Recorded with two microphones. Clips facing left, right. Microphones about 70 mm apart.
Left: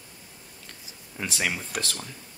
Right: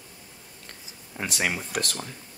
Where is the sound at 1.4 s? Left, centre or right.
Centre.